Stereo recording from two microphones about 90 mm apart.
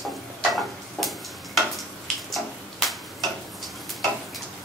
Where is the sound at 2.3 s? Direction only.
Centre (ahead or behind).